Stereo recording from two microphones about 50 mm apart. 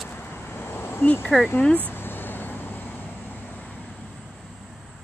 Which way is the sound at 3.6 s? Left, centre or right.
Left.